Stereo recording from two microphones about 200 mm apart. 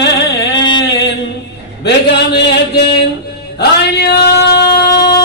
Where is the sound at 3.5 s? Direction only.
55° left (ahead or behind).